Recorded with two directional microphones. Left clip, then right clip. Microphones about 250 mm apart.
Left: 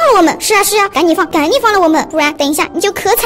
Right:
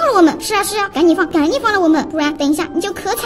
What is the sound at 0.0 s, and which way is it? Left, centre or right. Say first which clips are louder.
Speech: left 4 dB; left.